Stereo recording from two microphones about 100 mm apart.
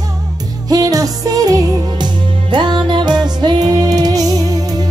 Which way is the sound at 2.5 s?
50° right (ahead or behind).